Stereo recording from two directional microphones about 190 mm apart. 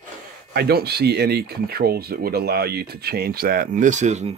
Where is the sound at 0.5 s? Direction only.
55° right (ahead or behind).